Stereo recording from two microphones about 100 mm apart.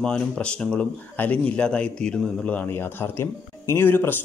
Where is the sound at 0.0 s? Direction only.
10° left (ahead or behind).